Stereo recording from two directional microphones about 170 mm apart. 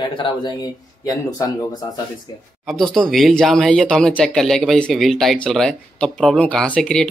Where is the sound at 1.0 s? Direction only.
20° left (ahead or behind).